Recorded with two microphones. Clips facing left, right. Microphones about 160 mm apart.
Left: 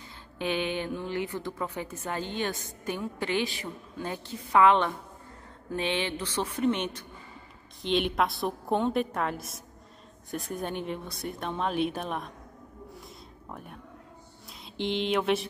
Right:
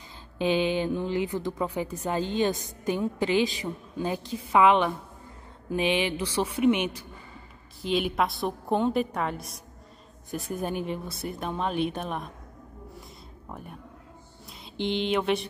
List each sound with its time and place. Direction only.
0.4 s a woman's voice: 15° right (ahead or behind); by 12.3 s centre (ahead or behind)
13.5 s speech: centre (ahead or behind)
14.8 s speech: centre (ahead or behind)